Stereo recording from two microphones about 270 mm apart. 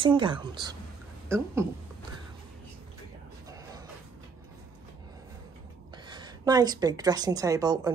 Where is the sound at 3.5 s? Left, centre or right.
Centre.